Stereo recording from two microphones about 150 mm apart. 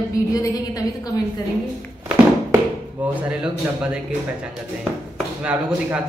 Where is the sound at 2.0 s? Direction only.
10° right (ahead or behind).